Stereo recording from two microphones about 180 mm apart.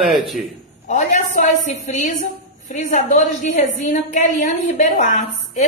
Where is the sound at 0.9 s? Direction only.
40° left (ahead or behind).